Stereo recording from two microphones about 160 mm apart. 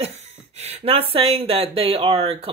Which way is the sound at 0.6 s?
40° right (ahead or behind).